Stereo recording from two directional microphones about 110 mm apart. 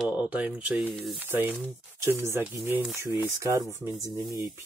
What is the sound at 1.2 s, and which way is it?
Speech, 15° right (ahead or behind).